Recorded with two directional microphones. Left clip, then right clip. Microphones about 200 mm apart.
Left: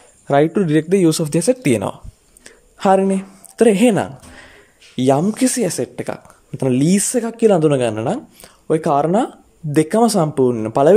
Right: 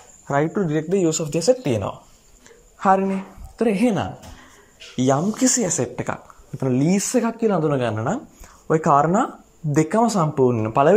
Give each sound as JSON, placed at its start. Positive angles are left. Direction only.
{"t": 0.3, "sound": "speech", "side_deg": 25}
{"t": 2.4, "sound": "a sound", "side_deg": 30}
{"t": 4.9, "sound": "speech", "side_deg": 25}